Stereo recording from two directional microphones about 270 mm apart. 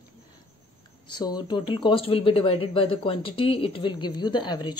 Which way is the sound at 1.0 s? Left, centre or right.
Centre.